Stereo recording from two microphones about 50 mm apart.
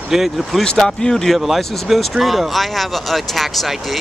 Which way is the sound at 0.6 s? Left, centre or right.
Centre.